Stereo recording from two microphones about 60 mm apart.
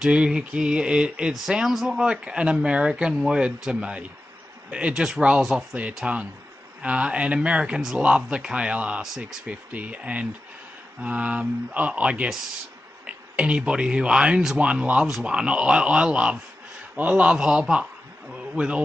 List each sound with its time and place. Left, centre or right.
0.0 s speech: centre
9.0 s speech: centre
9.5 s speech: right
18.3 s a sound: centre